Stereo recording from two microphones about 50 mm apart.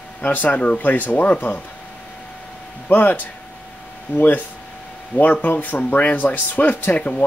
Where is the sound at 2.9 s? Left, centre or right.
Left.